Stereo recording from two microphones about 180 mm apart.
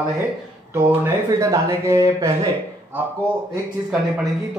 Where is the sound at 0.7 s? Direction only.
15° right (ahead or behind).